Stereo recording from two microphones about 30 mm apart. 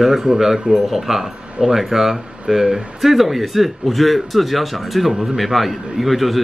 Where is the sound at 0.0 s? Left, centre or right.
Centre.